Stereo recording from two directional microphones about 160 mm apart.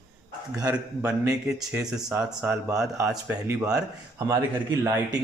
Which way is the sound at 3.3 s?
15° right (ahead or behind).